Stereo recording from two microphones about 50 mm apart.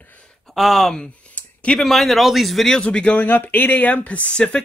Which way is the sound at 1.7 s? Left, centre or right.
Centre.